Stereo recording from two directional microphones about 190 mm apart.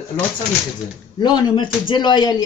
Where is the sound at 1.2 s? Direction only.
20° left (ahead or behind).